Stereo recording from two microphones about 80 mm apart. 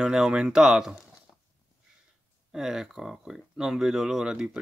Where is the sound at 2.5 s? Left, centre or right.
Centre.